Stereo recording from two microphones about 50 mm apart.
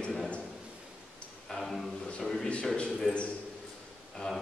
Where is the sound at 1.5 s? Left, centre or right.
Centre.